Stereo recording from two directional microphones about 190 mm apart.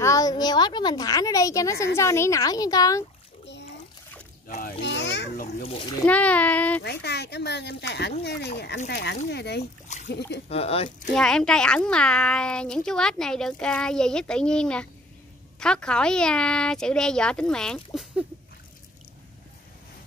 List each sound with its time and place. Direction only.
0.0 s a woman's voice: 20° left (ahead or behind)
4.5 s a child's voice: 45° left (ahead or behind)
4.8 s a child's voice: 70° left (ahead or behind)
6.0 s speech: 5° left (ahead or behind)
6.8 s speech: 60° left (ahead or behind)
9.9 s a sound: 40° left (ahead or behind)
10.5 s speech: 30° left (ahead or behind)
11.1 s a child's voice: 5° left (ahead or behind)